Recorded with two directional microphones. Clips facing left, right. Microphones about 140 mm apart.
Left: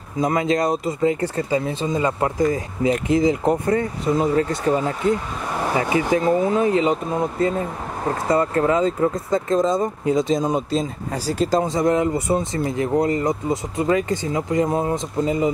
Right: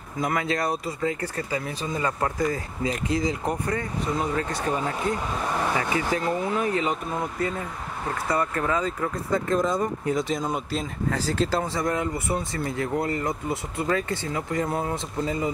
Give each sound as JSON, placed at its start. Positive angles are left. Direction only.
{"t": 0.2, "sound": "speech", "side_deg": 20}
{"t": 5.8, "sound": "speech", "side_deg": 25}
{"t": 11.1, "sound": "speech", "side_deg": 10}